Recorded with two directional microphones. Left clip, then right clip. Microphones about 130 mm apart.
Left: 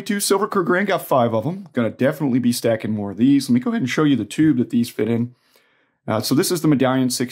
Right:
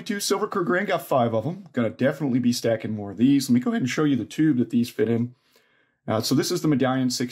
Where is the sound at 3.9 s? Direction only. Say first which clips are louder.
Left 7 dB; 35° left (ahead or behind).